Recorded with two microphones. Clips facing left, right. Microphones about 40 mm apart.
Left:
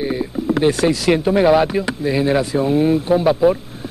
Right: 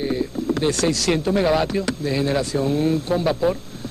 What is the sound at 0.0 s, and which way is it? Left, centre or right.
Speech, centre.